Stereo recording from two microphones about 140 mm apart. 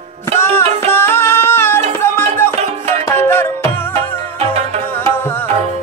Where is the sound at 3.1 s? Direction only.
15° left (ahead or behind).